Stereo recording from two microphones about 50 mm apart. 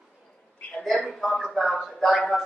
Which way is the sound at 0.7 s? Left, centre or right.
Centre.